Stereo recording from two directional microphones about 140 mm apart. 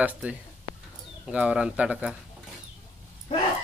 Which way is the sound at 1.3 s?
5° right (ahead or behind).